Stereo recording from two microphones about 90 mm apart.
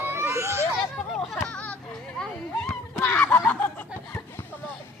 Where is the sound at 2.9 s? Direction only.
20° left (ahead or behind).